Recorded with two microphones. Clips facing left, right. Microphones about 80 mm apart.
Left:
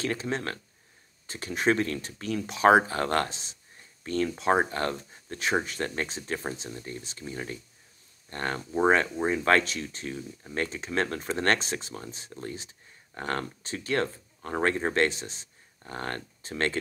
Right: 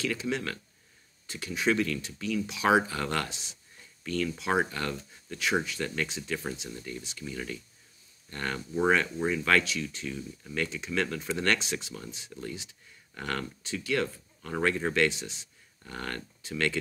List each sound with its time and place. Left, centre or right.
0.0 s speech: left